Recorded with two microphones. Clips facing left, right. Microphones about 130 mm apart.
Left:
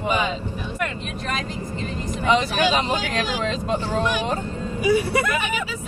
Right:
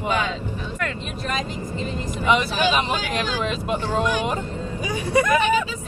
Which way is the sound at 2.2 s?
10° right (ahead or behind).